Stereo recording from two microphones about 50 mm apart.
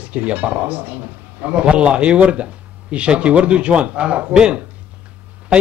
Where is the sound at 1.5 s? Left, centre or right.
Right.